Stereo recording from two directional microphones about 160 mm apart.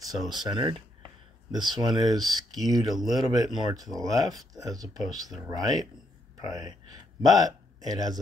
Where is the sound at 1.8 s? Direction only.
25° right (ahead or behind).